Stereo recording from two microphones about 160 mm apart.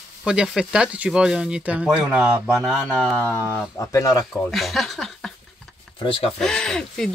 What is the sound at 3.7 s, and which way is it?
Speech, 20° left (ahead or behind).